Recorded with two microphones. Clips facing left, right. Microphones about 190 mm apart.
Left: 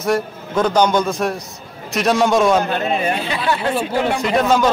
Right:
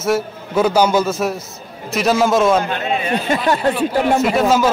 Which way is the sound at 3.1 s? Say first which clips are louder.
Right 4 dB; 45° right (ahead or behind).